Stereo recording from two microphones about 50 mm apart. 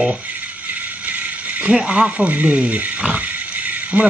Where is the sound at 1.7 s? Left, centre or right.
Centre.